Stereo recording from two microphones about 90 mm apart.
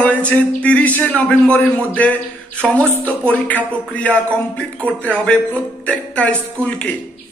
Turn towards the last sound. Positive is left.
turn(degrees=15)  # may be behind; listen again after turning